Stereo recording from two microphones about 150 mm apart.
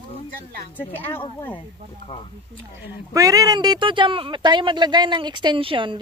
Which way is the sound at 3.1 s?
25° right (ahead or behind).